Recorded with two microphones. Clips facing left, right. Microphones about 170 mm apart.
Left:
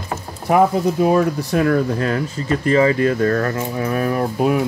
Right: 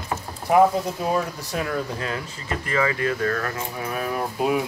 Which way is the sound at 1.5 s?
60° left (ahead or behind).